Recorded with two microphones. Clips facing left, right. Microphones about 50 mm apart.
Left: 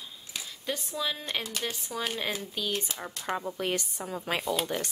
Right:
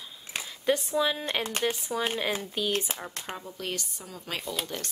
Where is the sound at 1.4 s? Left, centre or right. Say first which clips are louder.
Right 5 dB; right.